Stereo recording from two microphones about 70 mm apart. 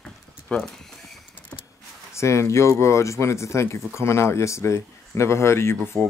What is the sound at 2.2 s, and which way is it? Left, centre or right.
Speech, left.